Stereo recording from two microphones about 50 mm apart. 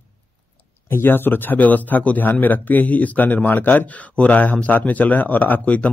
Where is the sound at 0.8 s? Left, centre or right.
Left.